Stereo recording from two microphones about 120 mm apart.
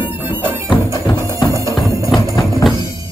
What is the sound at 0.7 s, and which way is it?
Music, 35° left (ahead or behind).